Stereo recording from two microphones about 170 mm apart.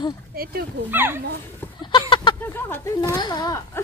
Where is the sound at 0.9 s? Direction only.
10° right (ahead or behind).